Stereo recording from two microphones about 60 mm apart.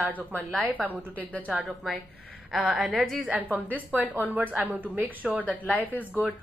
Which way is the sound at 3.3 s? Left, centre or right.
Right.